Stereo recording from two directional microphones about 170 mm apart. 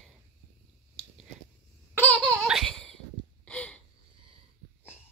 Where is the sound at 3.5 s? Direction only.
5° left (ahead or behind).